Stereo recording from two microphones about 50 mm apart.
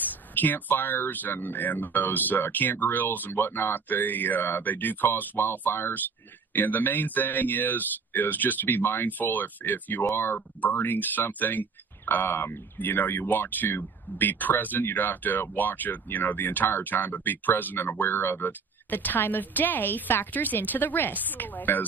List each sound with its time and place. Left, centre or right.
0.0 s speech: left
12.7 s speech: left